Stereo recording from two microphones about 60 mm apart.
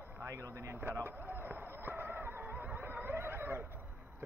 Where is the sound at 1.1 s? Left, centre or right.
Right.